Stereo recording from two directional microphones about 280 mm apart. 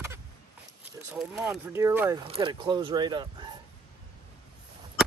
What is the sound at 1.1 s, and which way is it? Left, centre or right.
Speech, centre.